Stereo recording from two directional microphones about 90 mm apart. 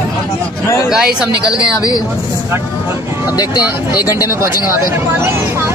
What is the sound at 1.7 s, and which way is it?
Speech, 45° left (ahead or behind).